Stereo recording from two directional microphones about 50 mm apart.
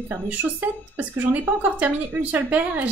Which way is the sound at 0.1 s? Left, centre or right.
Right.